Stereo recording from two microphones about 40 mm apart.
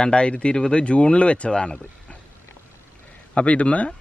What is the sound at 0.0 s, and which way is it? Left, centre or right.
Speech, left.